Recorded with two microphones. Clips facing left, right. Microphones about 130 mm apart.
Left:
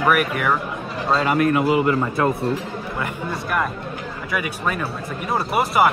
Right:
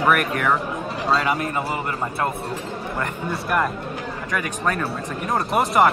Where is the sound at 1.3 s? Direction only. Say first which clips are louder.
Left 7 dB; 65° left (ahead or behind).